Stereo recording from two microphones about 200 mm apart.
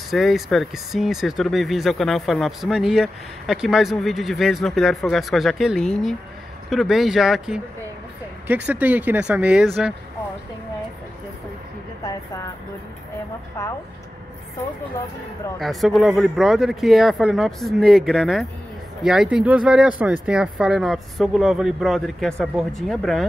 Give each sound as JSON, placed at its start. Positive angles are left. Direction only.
{"t": 0.1, "sound": "speech", "side_deg": 0}
{"t": 8.6, "sound": "speech", "side_deg": -5}
{"t": 12.0, "sound": "a sound", "side_deg": 15}
{"t": 15.6, "sound": "speech", "side_deg": 0}